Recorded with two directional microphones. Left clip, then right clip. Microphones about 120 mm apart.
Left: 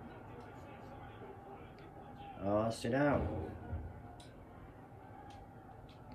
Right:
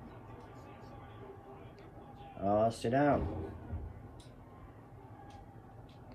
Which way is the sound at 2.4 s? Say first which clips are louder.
Right 5 dB; 10° right (ahead or behind).